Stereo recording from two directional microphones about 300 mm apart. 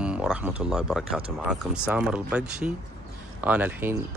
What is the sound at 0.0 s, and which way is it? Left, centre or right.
Speech, centre.